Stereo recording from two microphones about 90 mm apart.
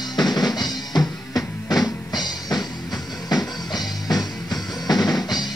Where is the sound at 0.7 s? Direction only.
45° left (ahead or behind).